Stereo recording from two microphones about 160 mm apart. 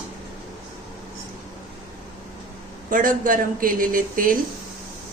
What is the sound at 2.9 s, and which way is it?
Speech, 55° right (ahead or behind).